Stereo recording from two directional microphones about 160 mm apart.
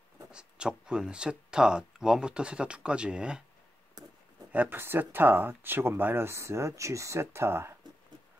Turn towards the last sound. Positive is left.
turn(degrees=-15)  # may be behind; listen again after turning